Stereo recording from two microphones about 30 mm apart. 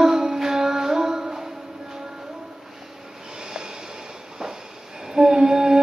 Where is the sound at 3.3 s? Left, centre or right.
Right.